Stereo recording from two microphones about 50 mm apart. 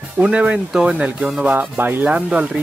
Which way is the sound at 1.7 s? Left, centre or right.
Right.